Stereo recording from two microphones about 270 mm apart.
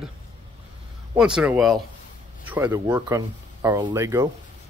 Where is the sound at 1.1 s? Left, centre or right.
Centre.